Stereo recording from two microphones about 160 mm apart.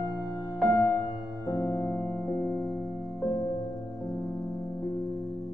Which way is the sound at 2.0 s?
5° left (ahead or behind).